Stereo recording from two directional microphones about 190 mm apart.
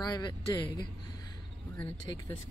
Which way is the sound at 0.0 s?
20° left (ahead or behind).